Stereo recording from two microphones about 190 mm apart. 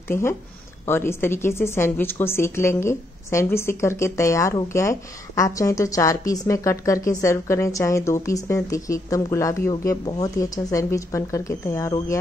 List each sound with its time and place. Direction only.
0.1 s a woman's voice: 15° left (ahead or behind)